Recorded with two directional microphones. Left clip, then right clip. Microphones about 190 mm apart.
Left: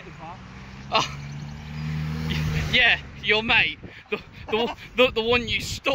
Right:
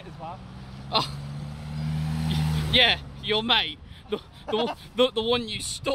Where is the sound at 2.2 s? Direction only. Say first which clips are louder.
Left 3 dB; 10° right (ahead or behind).